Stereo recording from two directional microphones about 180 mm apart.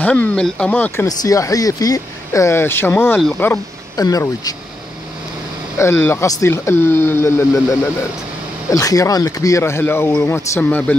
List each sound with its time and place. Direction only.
0.0 s speech: 10° left (ahead or behind)
1.0 s speech: 20° left (ahead or behind)
3.9 s speech: 20° left (ahead or behind)
5.8 s speech: 15° left (ahead or behind)
8.6 s speech: 20° left (ahead or behind)